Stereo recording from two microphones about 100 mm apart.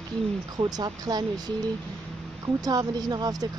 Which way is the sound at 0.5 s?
40° right (ahead or behind).